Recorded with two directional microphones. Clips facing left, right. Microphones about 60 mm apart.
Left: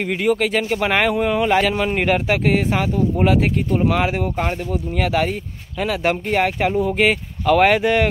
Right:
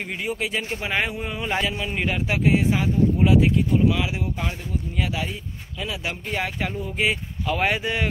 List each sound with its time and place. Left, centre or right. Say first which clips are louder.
0.2 s a man's voice: left 9 dB; left
3.3 s a man's voice: left 1 dB; left